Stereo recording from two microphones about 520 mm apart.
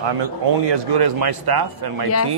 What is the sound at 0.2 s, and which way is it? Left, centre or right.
A man's voice, right.